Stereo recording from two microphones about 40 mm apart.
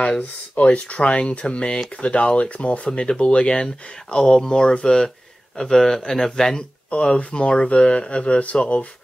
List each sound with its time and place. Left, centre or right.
0.0 s speech: left; by 6.6 s centre
6.9 s speech: left